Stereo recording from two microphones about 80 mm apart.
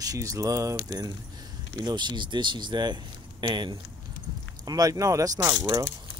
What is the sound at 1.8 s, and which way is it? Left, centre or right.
Speech, right.